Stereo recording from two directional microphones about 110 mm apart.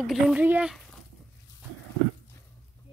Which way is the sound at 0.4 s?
10° right (ahead or behind).